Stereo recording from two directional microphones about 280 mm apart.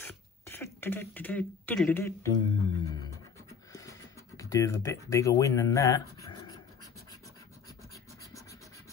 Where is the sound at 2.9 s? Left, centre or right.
Centre.